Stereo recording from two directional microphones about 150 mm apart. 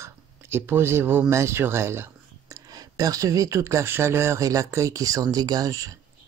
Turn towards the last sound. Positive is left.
turn(degrees=-20)  # may be behind; listen again after turning